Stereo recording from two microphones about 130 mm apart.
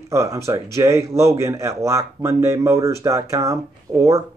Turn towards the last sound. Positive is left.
turn(degrees=-25)  # may be behind; listen again after turning